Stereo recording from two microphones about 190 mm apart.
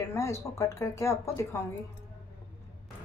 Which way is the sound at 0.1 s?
15° left (ahead or behind).